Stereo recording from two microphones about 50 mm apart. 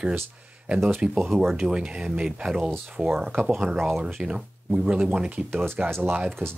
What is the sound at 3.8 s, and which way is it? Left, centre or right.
Speech, centre.